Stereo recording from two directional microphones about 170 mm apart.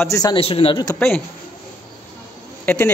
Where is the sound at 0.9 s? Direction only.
10° left (ahead or behind).